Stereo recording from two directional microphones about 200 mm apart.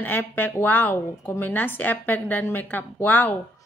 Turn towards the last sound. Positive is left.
turn(degrees=10)  # may be behind; listen again after turning